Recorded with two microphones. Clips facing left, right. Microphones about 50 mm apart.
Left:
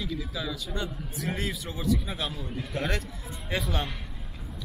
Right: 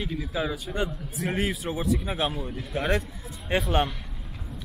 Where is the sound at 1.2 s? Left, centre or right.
Centre.